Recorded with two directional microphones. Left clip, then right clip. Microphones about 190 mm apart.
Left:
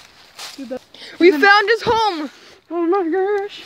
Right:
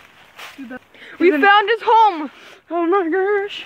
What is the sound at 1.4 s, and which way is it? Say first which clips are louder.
Speech: left 1 dB; 15° left (ahead or behind).